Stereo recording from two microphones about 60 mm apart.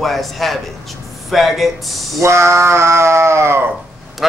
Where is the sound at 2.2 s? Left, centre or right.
Right.